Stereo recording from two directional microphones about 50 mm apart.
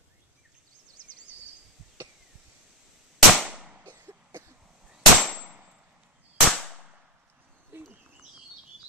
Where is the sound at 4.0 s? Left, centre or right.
Right.